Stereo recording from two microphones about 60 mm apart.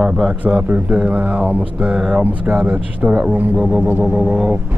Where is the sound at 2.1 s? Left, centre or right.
Right.